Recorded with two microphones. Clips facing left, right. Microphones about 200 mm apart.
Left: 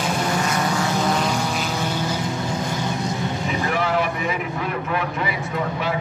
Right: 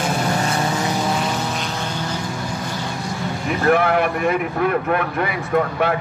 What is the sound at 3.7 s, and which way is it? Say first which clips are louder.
A man's voice: right 7 dB; 55° right (ahead or behind).